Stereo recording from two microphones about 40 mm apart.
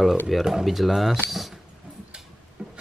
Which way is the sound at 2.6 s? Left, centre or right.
Centre.